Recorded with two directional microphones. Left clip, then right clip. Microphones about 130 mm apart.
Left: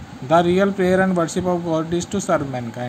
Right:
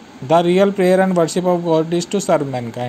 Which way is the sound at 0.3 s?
25° right (ahead or behind).